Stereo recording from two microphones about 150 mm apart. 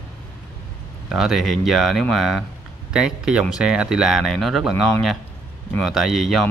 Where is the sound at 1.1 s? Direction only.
Centre (ahead or behind).